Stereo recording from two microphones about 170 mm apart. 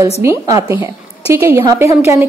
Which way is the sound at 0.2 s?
15° right (ahead or behind).